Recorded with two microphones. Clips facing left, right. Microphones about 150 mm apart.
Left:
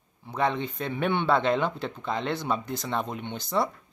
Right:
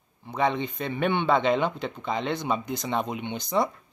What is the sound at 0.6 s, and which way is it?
Speech, 5° left (ahead or behind).